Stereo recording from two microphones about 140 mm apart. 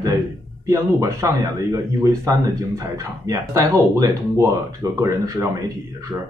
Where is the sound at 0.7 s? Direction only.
20° right (ahead or behind).